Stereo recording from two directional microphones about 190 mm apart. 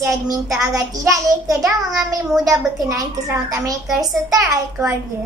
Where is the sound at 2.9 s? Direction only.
15° right (ahead or behind).